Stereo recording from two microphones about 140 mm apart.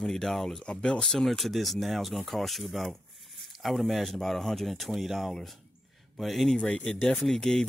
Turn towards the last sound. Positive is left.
turn(degrees=5)  # may be behind; listen again after turning